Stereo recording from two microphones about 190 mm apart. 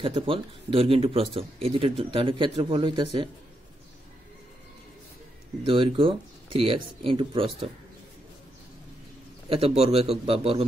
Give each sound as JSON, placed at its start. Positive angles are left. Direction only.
{"t": 0.0, "sound": "speech", "side_deg": -30}
{"t": 5.7, "sound": "speech", "side_deg": -30}
{"t": 9.5, "sound": "speech", "side_deg": -30}